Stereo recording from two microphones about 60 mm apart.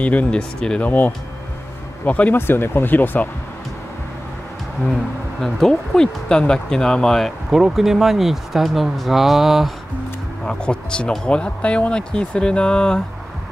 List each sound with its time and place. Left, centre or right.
0.0 s speech: left
0.8 s speech: left
2.3 s speech: left
5.4 s speech: centre
10.4 s speech: centre